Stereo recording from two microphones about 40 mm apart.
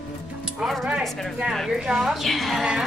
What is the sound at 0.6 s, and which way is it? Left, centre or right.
Speech, centre.